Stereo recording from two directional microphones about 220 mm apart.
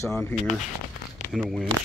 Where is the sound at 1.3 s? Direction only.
Centre (ahead or behind).